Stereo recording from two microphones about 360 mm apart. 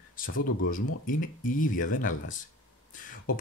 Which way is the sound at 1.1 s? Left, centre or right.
Left.